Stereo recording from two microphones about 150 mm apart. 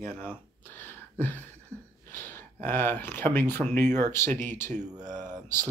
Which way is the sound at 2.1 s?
15° left (ahead or behind).